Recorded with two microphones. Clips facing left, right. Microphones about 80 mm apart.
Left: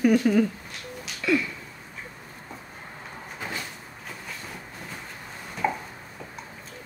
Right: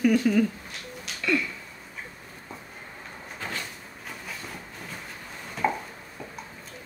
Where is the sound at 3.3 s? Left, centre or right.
Centre.